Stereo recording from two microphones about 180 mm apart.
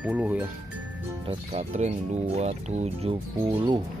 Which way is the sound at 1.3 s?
35° right (ahead or behind).